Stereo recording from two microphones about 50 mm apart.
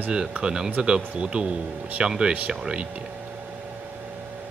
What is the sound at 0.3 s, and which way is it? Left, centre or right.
Speech, centre.